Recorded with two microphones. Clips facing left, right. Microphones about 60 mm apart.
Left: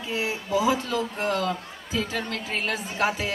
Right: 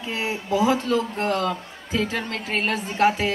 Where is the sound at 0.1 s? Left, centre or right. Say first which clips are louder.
Right 1 dB; right.